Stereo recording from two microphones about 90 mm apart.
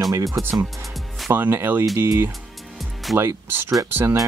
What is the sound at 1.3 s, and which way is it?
Speech, 25° right (ahead or behind).